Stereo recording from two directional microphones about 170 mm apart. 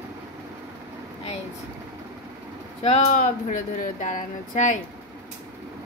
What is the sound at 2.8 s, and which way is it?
Speech, 40° left (ahead or behind).